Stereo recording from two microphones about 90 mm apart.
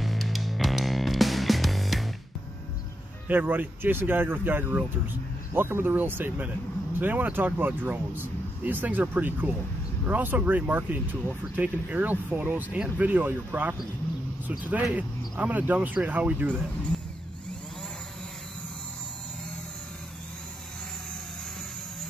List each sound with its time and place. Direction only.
0.0 s music: centre (ahead or behind)
3.3 s speech: 20° right (ahead or behind)
15.0 s speech: 20° right (ahead or behind)